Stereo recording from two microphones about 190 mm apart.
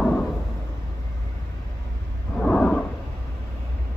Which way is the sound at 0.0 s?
5° left (ahead or behind).